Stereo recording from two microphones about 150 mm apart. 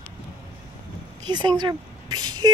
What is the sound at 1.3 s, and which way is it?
Speech, 30° right (ahead or behind).